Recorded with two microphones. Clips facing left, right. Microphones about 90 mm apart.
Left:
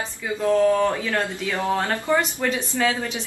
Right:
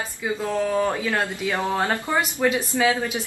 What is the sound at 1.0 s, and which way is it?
Speech, 20° right (ahead or behind).